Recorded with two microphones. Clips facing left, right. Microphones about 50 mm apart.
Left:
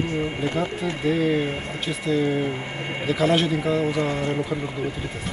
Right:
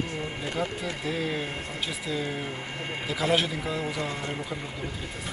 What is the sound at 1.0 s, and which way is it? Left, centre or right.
Speech, centre.